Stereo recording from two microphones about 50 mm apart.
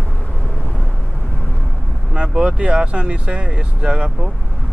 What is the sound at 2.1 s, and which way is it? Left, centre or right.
Speech, centre.